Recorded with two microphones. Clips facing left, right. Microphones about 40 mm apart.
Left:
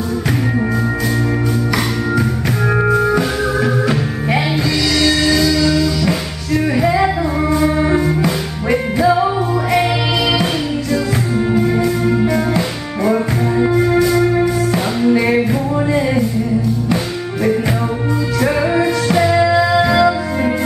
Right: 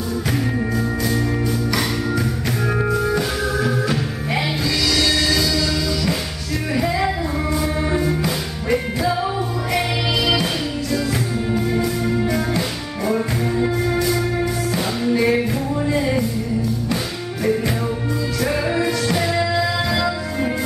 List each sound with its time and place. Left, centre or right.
2.8 s music: left
10.4 s music: centre
18.4 s music: centre